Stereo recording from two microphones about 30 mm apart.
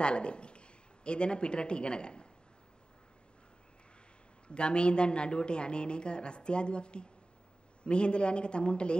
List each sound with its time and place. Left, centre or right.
0.0 s speech: left
4.6 s a man's voice: left